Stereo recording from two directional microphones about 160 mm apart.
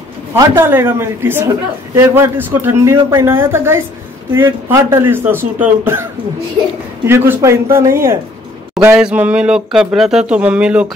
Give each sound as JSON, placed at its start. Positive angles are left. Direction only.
{"t": 0.3, "sound": "speech", "side_deg": -15}
{"t": 7.1, "sound": "speech", "side_deg": -15}
{"t": 8.7, "sound": "speech", "side_deg": -5}